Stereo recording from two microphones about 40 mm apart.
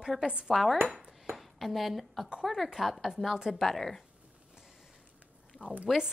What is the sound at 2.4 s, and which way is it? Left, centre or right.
Speech, centre.